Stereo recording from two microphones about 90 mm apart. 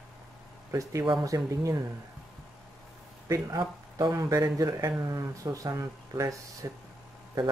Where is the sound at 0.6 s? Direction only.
35° right (ahead or behind).